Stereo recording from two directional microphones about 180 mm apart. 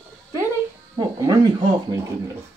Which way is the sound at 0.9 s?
20° right (ahead or behind).